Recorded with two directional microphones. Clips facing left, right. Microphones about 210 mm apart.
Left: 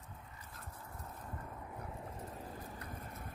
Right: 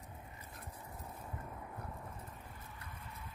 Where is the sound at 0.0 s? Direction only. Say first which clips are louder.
Right 2 dB; 20° right (ahead or behind).